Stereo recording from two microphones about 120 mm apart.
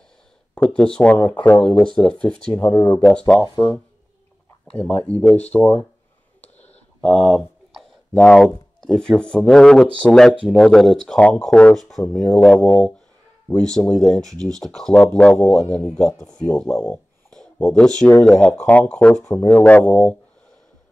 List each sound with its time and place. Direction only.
0.6 s speech: 10° left (ahead or behind)
3.4 s speech: 35° left (ahead or behind)
4.7 s speech: 10° left (ahead or behind)
6.4 s clicking: 65° left (ahead or behind)
7.0 s speech: 5° left (ahead or behind)